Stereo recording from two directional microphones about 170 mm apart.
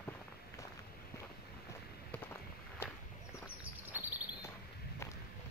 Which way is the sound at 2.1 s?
15° left (ahead or behind).